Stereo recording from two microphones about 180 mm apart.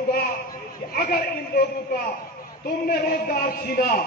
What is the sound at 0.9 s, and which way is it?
Speech, 55° left (ahead or behind).